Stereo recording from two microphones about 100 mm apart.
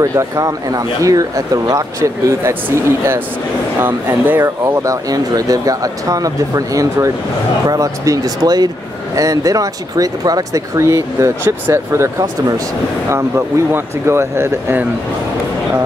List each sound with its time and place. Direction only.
0.0 s speech: 30° right (ahead or behind)
13.7 s speech: 25° right (ahead or behind)